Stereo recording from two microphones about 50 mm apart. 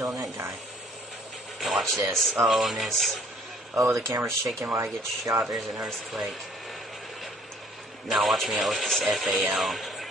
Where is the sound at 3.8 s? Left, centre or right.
Right.